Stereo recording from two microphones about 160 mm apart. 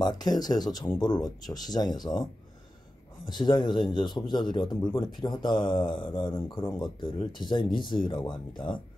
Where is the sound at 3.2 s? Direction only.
25° left (ahead or behind).